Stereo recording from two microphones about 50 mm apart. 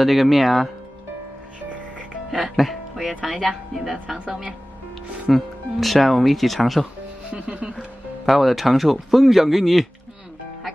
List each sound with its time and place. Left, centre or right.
0.0 s speech: centre
2.5 s a woman's voice: centre
5.3 s speech: centre
7.3 s speech: right
8.3 s speech: centre